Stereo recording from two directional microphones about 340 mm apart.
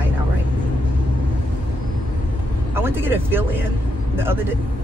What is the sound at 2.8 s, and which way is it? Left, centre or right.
Speech, centre.